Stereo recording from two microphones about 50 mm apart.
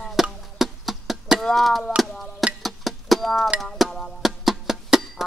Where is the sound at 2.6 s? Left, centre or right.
Centre.